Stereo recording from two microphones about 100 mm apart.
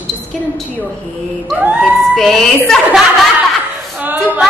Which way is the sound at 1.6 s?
10° right (ahead or behind).